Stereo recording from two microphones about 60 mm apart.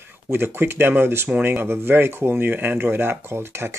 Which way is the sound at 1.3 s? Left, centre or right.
Right.